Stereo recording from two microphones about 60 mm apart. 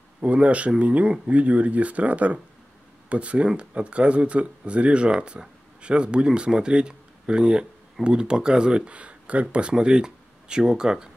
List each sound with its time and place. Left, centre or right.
0.2 s speech: right